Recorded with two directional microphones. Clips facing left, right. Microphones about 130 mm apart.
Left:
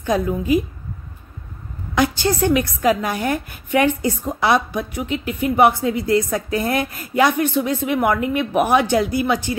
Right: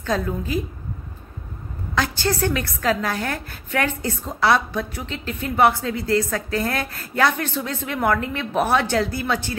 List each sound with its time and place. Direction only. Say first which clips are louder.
0.0 s a woman's voice: left 4 dB; 15° left (ahead or behind)
2.0 s a woman's voice: left 4 dB; 15° left (ahead or behind)